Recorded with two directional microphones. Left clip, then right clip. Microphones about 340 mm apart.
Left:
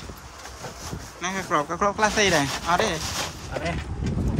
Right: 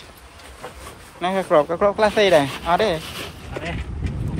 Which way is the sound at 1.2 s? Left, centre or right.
Centre.